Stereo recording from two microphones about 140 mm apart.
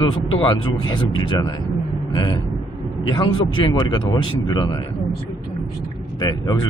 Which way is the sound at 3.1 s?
35° left (ahead or behind).